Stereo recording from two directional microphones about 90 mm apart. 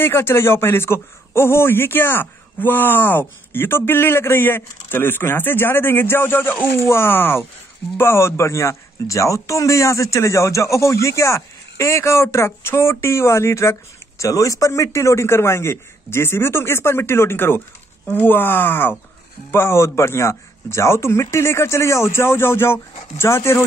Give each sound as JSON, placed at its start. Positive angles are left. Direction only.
{"t": 0.0, "sound": "a man's voice", "side_deg": 25}